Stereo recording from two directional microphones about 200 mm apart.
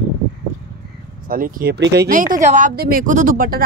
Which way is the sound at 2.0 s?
40° right (ahead or behind).